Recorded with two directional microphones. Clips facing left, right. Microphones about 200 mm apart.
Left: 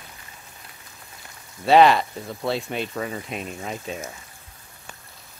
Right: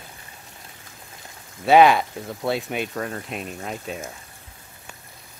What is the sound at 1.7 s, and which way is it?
Speech, centre (ahead or behind).